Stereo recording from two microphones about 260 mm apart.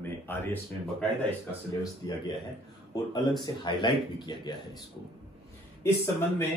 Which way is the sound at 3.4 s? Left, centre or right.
Centre.